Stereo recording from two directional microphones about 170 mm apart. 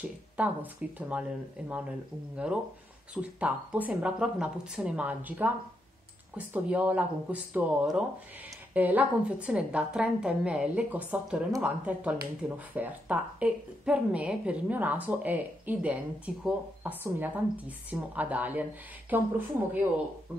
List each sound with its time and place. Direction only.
0.4 s a woman's voice: 10° right (ahead or behind)